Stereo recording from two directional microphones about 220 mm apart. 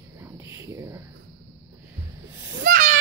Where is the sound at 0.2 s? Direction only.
15° right (ahead or behind).